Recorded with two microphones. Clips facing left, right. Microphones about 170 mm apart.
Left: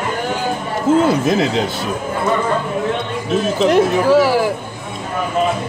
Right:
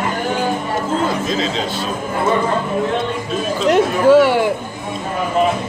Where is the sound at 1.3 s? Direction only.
65° left (ahead or behind).